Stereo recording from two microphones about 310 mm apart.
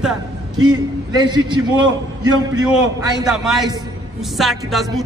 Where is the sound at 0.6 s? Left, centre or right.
Centre.